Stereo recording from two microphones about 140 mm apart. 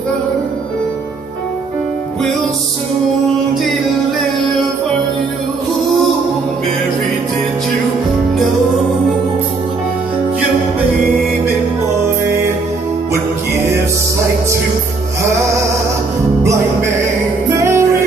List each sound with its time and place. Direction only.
17.6 s music: 20° right (ahead or behind)